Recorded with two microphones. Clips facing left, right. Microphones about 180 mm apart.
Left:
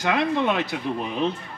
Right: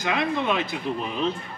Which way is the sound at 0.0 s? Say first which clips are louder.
Left 3 dB; 65° left (ahead or behind).